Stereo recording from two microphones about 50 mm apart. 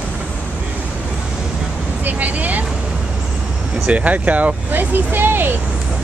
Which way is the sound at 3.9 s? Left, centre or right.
Right.